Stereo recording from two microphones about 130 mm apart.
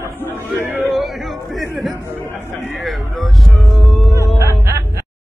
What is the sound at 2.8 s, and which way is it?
Music, centre (ahead or behind).